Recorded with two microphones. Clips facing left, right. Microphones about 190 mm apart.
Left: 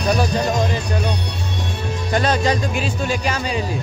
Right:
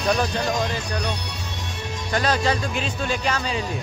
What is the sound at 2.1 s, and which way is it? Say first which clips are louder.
Speech: left 3 dB; 20° left (ahead or behind).